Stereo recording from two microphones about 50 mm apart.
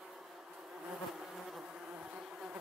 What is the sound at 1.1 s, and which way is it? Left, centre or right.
Bee, centre.